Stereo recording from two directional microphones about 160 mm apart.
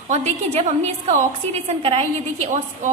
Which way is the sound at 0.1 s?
45° right (ahead or behind).